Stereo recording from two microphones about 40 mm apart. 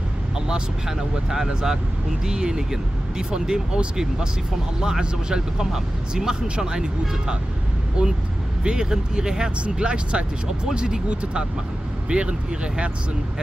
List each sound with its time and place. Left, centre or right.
0.5 s speech: centre; by 12.9 s right